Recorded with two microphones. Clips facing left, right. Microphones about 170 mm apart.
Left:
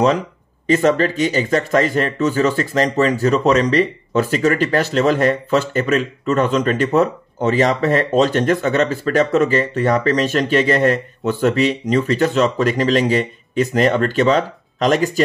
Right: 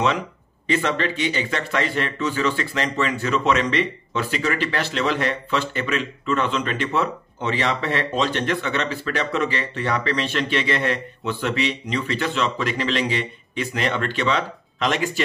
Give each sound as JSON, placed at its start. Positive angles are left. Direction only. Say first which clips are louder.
{"t": 0.7, "sound": "speech", "louder": "left 8 dB", "side_deg": 45}